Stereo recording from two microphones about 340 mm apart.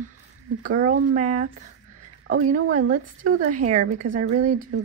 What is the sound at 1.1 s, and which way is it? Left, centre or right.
Speech, right.